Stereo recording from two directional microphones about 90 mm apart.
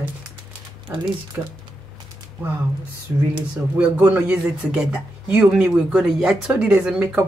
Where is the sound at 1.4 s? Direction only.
5° right (ahead or behind).